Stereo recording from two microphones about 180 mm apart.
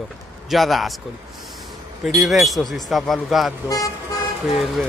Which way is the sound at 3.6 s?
20° left (ahead or behind).